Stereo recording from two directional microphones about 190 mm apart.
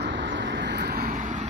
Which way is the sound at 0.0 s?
70° right (ahead or behind).